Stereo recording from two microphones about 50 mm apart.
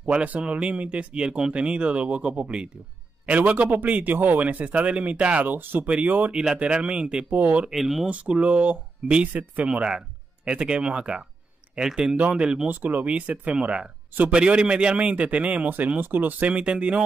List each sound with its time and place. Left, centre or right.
0.1 s a man's voice: right
5.5 s a man's voice: right
6.3 s speech: centre
7.2 s a man's voice: right
7.7 s speech: centre
8.1 s speech: right
9.8 s speech: centre
12.6 s speech: right
16.0 s speech: right